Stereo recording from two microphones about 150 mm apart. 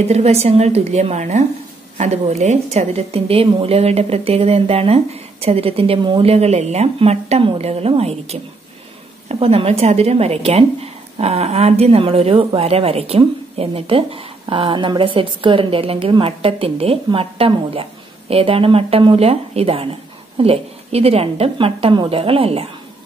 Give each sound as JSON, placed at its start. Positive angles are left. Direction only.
{"t": 0.1, "sound": "a woman's voice", "side_deg": -45}